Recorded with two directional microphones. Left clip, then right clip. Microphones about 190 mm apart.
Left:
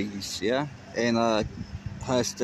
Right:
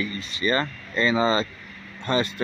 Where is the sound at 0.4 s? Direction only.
15° left (ahead or behind).